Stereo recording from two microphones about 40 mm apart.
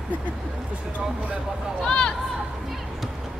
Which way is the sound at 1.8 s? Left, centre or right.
Left.